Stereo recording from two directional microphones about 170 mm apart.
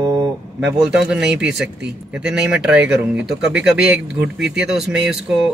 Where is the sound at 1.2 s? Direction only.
90° right.